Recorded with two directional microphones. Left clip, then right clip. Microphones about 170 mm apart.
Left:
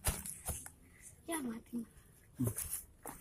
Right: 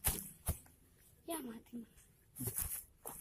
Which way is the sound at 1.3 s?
25° right (ahead or behind).